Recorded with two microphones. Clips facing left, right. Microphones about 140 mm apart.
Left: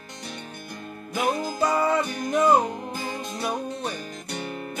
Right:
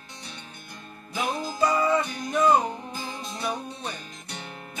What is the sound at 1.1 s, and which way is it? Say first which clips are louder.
Music: left 4 dB; 55° left (ahead or behind).